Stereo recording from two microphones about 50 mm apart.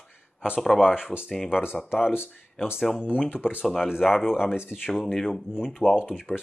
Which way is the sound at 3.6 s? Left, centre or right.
Centre.